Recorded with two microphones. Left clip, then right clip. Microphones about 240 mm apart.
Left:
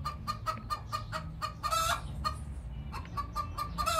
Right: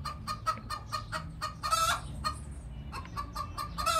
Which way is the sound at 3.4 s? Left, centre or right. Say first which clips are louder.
Left 2 dB; right.